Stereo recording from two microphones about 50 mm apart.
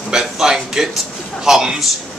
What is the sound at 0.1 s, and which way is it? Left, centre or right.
A man's voice, centre.